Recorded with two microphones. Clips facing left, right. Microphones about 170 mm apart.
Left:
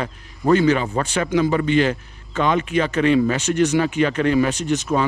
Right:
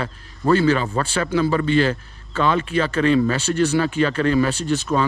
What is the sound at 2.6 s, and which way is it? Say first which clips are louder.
Speech: left 1 dB; 30° right (ahead or behind).